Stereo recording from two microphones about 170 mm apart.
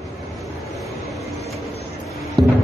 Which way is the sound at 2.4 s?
25° right (ahead or behind).